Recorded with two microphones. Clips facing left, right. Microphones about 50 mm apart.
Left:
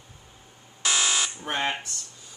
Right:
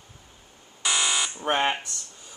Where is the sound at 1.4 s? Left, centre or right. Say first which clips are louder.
Right 4 dB; right.